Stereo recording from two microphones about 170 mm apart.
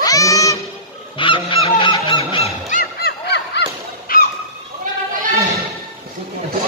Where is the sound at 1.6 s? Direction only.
30° left (ahead or behind).